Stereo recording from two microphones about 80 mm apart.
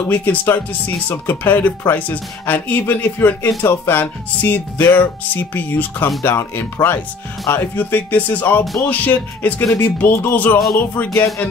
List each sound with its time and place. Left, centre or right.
0.1 s speech: left